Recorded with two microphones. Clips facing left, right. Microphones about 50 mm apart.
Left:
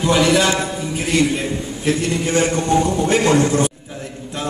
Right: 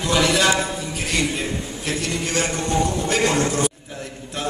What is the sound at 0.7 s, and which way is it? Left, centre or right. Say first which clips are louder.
A man's voice: left 6 dB; centre.